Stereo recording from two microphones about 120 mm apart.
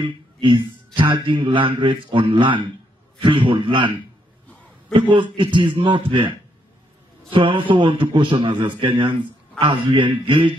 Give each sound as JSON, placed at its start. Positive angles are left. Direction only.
{"t": 0.0, "sound": "a man's voice", "side_deg": -45}
{"t": 4.9, "sound": "a man's voice", "side_deg": -45}